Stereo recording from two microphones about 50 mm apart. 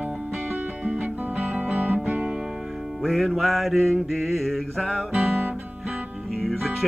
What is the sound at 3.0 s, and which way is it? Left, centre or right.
Music, centre.